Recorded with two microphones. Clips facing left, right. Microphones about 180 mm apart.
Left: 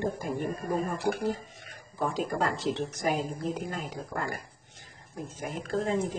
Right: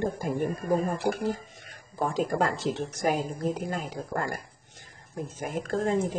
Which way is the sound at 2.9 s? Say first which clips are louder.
Right 2 dB; 45° right (ahead or behind).